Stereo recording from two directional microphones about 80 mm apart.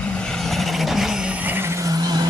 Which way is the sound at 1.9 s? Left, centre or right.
Right.